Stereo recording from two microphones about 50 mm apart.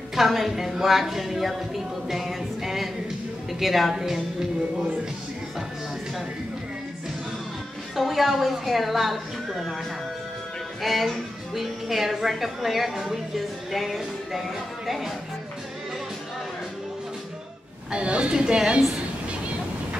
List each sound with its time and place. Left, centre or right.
0.1 s a woman's voice: centre
7.9 s a woman's voice: centre
10.8 s a woman's voice: centre
13.7 s music: centre
14.9 s a woman's voice: centre
17.9 s a woman's voice: right